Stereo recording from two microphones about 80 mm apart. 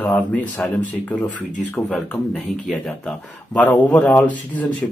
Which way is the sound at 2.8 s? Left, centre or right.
Centre.